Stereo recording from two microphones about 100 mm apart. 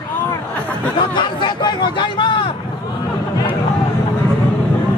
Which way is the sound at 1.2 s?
50° left (ahead or behind).